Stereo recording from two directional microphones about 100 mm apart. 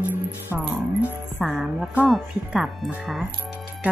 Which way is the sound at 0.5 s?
10° right (ahead or behind).